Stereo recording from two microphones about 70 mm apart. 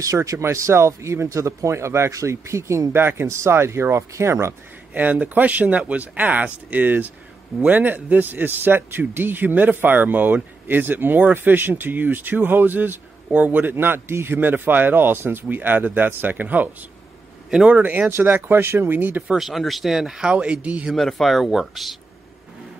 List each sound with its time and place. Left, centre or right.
0.0 s speech: right
4.9 s a man's voice: right
19.3 s speech: centre
20.9 s speech: centre